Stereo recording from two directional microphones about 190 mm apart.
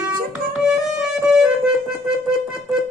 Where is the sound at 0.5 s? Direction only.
5° right (ahead or behind).